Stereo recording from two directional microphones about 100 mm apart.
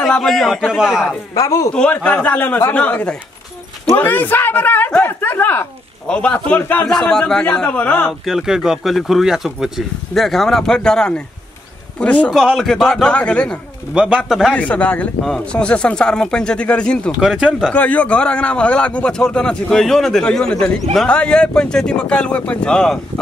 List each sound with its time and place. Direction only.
0.0 s speech: 5° left (ahead or behind)
1.3 s speech: 35° left (ahead or behind)
1.7 s a man's voice: 10° left (ahead or behind)
6.0 s a man's voice: 10° left (ahead or behind)
8.1 s a man's voice: 5° right (ahead or behind)
12.4 s a man's voice: centre (ahead or behind)
13.9 s speech: 5° right (ahead or behind)
14.5 s a man's voice: 15° left (ahead or behind)
17.2 s speech: 10° right (ahead or behind)
17.7 s a man's voice: 15° left (ahead or behind)